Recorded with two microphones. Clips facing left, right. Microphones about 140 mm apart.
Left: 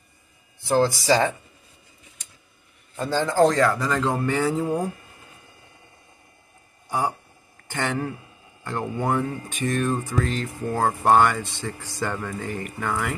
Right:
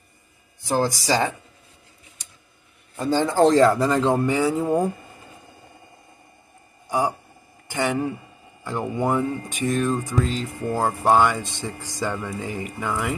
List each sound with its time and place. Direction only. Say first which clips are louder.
0.6 s speech: left 2 dB; 15° right (ahead or behind)
3.0 s speech: right 3 dB; 15° right (ahead or behind)
3.3 s speech: right 3 dB; 30° right (ahead or behind); by 4.8 s 5° right (ahead or behind)
7.6 s speech: right 3 dB; 10° right (ahead or behind)